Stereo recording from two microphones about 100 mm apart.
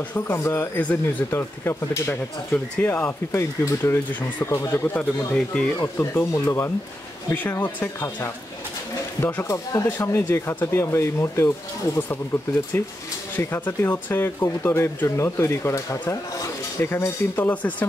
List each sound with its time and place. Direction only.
0.1 s speech: 20° left (ahead or behind)
2.5 s speech: 15° left (ahead or behind)
3.3 s speech: 30° left (ahead or behind)
4.8 s speech: 15° left (ahead or behind)
6.1 s speech: 25° left (ahead or behind)
9.9 s speech: 20° left (ahead or behind)